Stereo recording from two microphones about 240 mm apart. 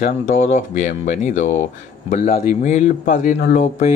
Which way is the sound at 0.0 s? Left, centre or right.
Left.